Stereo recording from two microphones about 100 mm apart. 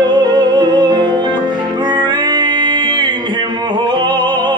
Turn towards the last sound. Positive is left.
turn(degrees=-50)  # may be behind; listen again after turning